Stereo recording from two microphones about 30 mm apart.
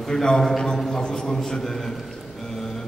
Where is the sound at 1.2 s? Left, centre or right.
Left.